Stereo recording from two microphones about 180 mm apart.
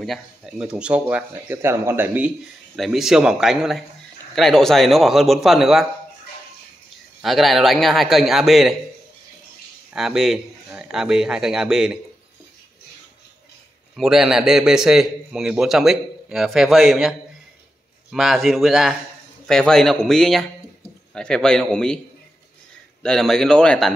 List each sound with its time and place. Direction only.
0.0 s speech: centre (ahead or behind)
7.2 s speech: centre (ahead or behind)
9.9 s speech: centre (ahead or behind)
13.9 s speech: centre (ahead or behind)
18.1 s a man's voice: centre (ahead or behind)
23.0 s speech: 5° left (ahead or behind)